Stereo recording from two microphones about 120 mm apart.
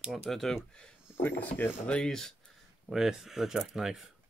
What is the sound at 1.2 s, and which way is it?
Speech, 15° left (ahead or behind).